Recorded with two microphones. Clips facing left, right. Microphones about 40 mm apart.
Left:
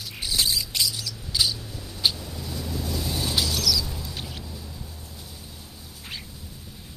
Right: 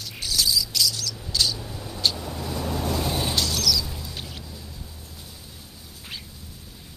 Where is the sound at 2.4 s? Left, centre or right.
Right.